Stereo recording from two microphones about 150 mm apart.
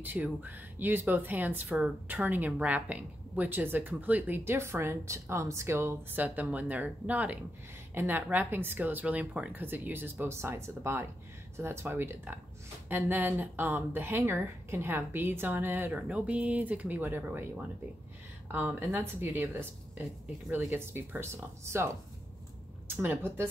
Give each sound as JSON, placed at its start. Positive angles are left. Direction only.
{"t": 0.0, "sound": "speech", "side_deg": -10}
{"t": 23.0, "sound": "speech", "side_deg": -15}